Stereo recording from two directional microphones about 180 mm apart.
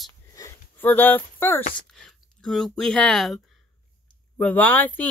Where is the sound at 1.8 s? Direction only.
5° left (ahead or behind).